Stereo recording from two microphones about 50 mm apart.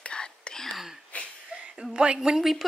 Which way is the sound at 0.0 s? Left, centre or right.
Centre.